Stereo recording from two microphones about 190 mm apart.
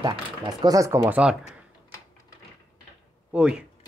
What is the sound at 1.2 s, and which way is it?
Speech, 5° right (ahead or behind).